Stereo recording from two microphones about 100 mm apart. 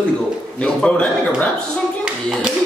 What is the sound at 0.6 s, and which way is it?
Speech, 10° left (ahead or behind).